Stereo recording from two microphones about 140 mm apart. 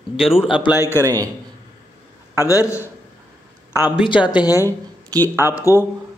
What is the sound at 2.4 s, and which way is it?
Speech, 20° left (ahead or behind).